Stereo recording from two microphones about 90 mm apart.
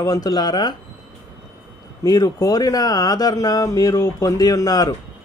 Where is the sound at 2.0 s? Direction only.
40° left (ahead or behind).